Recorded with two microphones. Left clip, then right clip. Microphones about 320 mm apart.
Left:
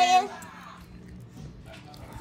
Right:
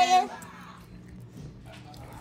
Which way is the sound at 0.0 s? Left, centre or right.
Centre.